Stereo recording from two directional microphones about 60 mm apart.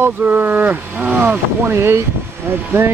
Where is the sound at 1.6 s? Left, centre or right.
Right.